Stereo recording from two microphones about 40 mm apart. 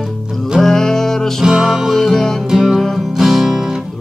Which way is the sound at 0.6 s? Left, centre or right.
Centre.